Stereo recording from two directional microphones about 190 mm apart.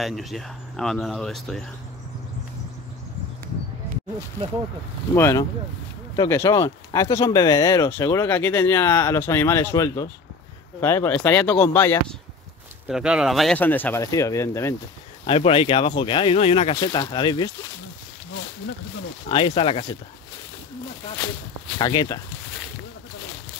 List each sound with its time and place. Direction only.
0.0 s speech: centre (ahead or behind)
5.1 s speech: 15° left (ahead or behind)
12.8 s speech: 5° right (ahead or behind); by 14.8 s 15° left (ahead or behind)
15.2 s speech: 30° left (ahead or behind)
19.2 s speech: 25° left (ahead or behind)
21.7 s speech: 20° left (ahead or behind)